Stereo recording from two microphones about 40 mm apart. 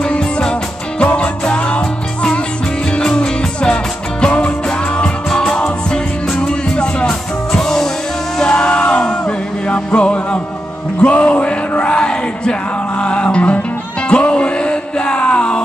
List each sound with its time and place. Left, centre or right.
0.2 s music: left
7.6 s music: centre
8.6 s crowd: left
9.0 s a sound: left
9.7 s music: left